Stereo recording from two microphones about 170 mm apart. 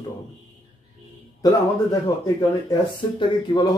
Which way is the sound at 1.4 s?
20° left (ahead or behind).